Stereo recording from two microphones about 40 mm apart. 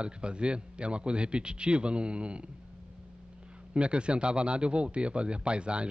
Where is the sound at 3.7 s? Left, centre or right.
Right.